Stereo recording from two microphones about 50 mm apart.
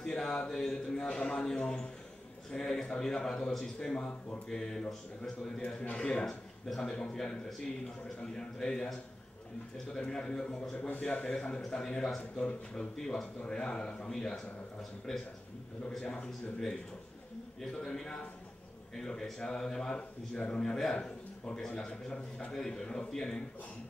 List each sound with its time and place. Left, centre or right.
0.0 s speech: centre
5.9 s speech: left
6.2 s speech: centre
11.0 s speech: left; by 15.2 s centre
15.9 s speech: centre
17.8 s speech: centre